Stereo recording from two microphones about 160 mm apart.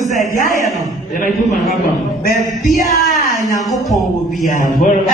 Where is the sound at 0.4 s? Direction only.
60° left (ahead or behind).